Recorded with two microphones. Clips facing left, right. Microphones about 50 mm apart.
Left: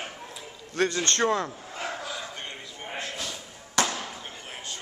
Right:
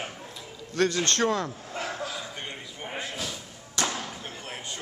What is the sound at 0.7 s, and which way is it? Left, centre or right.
Speech, left.